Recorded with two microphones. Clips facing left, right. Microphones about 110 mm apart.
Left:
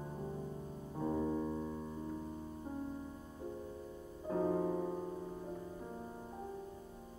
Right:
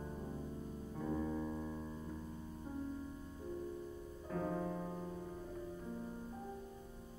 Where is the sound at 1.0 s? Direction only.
35° left (ahead or behind).